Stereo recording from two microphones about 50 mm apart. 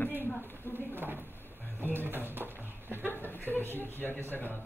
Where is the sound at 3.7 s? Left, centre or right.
Left.